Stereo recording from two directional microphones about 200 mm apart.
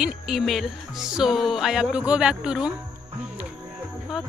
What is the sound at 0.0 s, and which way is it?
Speech, centre (ahead or behind).